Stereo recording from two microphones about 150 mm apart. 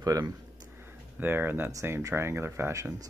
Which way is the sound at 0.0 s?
25° right (ahead or behind).